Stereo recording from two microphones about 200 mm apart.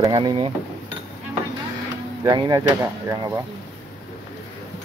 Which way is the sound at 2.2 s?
20° right (ahead or behind).